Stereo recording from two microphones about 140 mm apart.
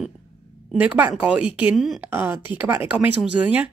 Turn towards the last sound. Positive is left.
turn(degrees=-10)  # may be behind; listen again after turning